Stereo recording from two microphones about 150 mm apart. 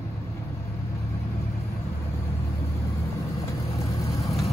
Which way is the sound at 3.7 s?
20° left (ahead or behind).